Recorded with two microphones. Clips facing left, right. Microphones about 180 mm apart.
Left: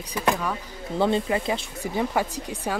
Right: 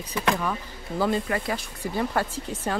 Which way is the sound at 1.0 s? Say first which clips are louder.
Left 2 dB; 20° left (ahead or behind).